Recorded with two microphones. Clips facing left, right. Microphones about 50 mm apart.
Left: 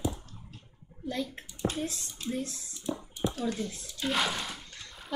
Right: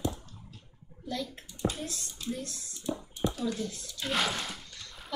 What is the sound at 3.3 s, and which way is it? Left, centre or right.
Speech, left.